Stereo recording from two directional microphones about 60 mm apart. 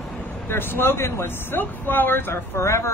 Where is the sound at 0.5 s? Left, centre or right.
Left.